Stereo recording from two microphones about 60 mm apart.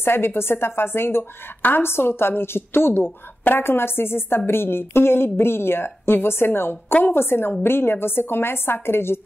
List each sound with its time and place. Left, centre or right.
0.0 s a woman's voice: left